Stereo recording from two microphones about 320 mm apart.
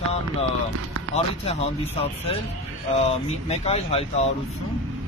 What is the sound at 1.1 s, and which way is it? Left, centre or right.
Speech, centre.